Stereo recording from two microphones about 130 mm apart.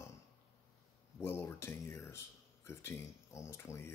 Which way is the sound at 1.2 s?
20° left (ahead or behind).